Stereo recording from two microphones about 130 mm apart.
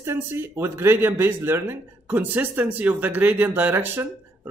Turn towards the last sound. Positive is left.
turn(degrees=-15)  # may be behind; listen again after turning